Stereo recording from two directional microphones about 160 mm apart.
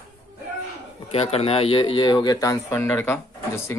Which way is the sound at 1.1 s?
40° left (ahead or behind).